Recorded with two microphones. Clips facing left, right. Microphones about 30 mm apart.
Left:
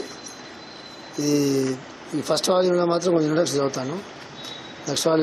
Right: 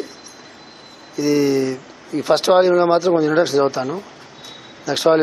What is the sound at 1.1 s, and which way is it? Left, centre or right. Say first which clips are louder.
Speech: right 5 dB; right.